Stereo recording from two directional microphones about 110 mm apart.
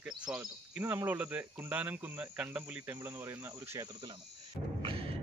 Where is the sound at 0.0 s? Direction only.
5° right (ahead or behind).